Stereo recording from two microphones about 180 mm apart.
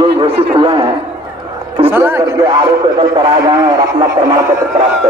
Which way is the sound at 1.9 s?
10° right (ahead or behind).